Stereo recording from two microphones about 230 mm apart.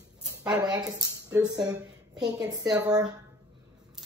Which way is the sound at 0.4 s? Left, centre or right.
Centre.